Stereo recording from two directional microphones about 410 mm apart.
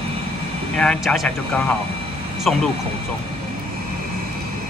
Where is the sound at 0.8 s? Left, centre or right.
Centre.